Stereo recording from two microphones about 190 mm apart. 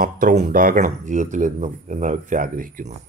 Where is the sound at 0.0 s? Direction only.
45° right (ahead or behind).